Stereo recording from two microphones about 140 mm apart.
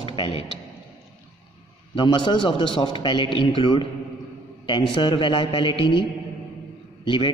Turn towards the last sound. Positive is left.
turn(degrees=35)  # may be behind; listen again after turning